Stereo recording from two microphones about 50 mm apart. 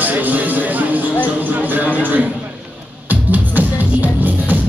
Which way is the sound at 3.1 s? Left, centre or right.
Right.